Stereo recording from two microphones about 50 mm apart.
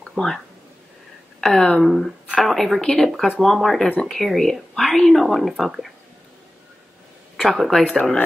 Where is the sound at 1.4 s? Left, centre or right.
Centre.